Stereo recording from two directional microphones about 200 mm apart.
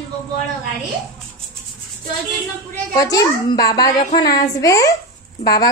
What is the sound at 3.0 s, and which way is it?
A child's voice, 20° left (ahead or behind).